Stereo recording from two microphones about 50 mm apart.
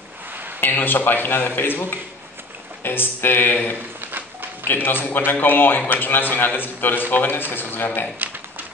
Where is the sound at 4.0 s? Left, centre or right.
Right.